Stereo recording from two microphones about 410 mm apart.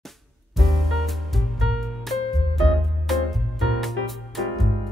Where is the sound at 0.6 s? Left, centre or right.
Centre.